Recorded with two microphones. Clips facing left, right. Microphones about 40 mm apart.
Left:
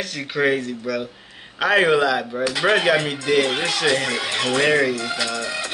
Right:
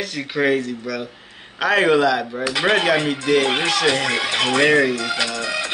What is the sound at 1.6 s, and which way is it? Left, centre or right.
Speech, centre.